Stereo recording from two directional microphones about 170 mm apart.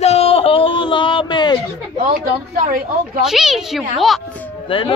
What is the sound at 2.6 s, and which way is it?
Speech, 55° right (ahead or behind).